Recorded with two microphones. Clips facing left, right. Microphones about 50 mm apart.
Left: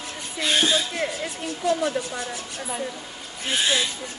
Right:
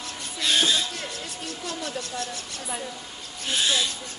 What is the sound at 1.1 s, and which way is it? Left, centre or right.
Speech, left.